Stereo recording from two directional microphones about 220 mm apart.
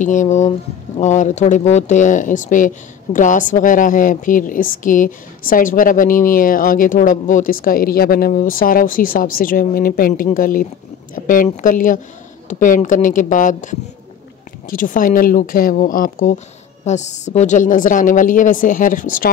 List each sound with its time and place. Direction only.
0.0 s speech: 35° left (ahead or behind)